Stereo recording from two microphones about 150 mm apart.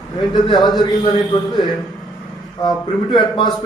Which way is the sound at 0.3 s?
30° left (ahead or behind).